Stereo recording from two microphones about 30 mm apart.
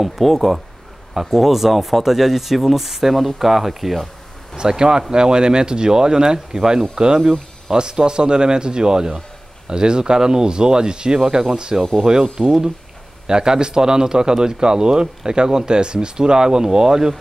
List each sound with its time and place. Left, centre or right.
0.0 s speech: centre
4.6 s speech: right
7.7 s speech: right